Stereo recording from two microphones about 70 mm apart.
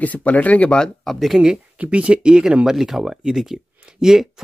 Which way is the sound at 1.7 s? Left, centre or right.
Centre.